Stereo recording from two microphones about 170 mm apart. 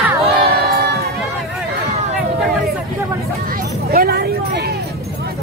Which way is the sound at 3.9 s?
65° right (ahead or behind).